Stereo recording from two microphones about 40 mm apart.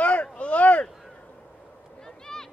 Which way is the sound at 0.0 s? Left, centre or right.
Left.